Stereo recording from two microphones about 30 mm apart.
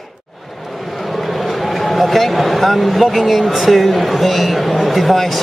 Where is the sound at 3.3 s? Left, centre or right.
Centre.